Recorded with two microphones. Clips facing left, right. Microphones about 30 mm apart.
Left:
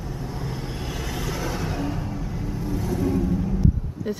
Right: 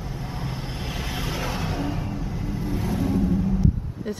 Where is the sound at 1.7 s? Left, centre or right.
Centre.